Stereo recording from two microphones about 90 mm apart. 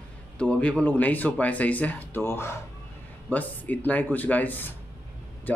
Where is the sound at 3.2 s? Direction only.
20° left (ahead or behind).